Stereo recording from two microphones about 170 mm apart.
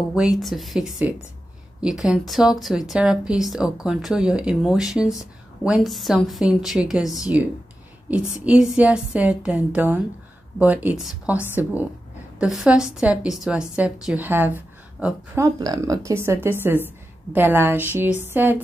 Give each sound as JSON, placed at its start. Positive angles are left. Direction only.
{"t": 0.1, "sound": "a woman's voice", "side_deg": 0}
{"t": 15.3, "sound": "a woman's voice", "side_deg": -20}